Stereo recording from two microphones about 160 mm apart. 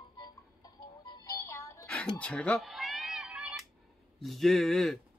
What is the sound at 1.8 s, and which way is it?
Cat, 5° left (ahead or behind).